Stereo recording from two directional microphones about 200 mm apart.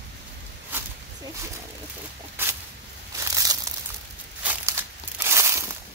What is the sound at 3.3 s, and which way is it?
Crumpling, 15° right (ahead or behind).